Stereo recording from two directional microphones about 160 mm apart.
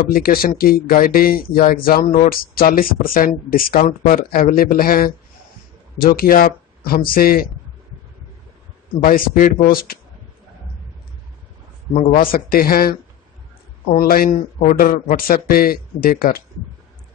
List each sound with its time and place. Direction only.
0.1 s speech: 65° left (ahead or behind)
9.0 s speech: 60° left (ahead or behind)
12.2 s speech: 65° left (ahead or behind)